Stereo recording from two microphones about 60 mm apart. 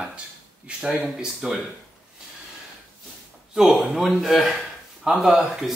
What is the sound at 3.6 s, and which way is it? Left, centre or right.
Speech, centre.